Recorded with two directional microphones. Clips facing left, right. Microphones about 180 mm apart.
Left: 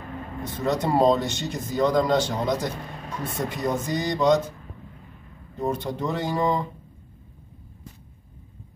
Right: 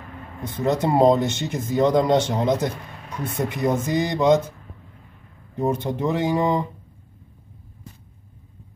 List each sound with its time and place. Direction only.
0.5 s speech: 20° right (ahead or behind)
5.6 s speech: 20° right (ahead or behind)